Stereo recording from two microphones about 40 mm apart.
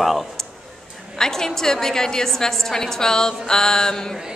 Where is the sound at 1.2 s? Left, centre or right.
Centre.